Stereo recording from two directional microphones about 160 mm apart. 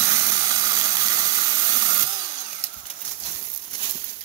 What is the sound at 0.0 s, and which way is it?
Steam, 25° right (ahead or behind).